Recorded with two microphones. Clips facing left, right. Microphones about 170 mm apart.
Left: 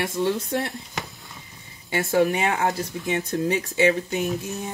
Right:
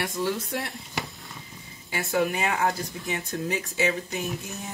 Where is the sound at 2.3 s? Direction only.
25° left (ahead or behind).